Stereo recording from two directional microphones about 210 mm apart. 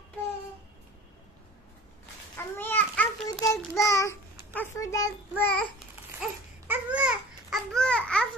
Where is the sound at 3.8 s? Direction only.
15° left (ahead or behind).